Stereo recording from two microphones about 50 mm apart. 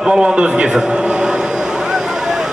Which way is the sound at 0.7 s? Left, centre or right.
Centre.